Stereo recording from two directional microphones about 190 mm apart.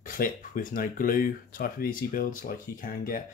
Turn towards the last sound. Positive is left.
turn(degrees=50)  # may be behind; listen again after turning